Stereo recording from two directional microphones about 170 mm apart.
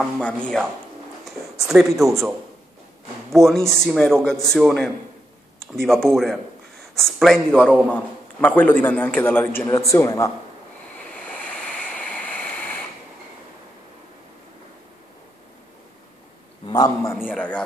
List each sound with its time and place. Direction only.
0.0 s a man's voice: 5° left (ahead or behind)
1.2 s a sound: centre (ahead or behind)
3.3 s a man's voice: centre (ahead or behind)
11.4 s vehicle: 5° left (ahead or behind)
16.6 s a man's voice: 20° left (ahead or behind)
17.4 s a man's voice: 5° left (ahead or behind)